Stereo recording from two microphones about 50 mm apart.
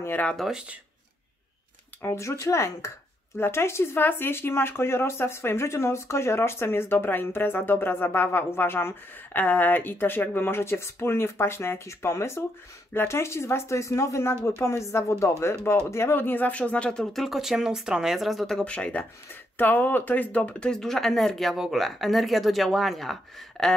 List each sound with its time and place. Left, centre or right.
0.4 s speech: centre
2.0 s speech: left
2.4 s speech: left
3.3 s a woman's voice: left
4.0 s speech: left
9.3 s speech: left
12.9 s speech: left
15.9 s speech: left
17.0 s speech: centre
17.3 s speech: centre
18.1 s speech: centre
18.6 s speech: left
19.6 s speech: left
20.7 s speech: centre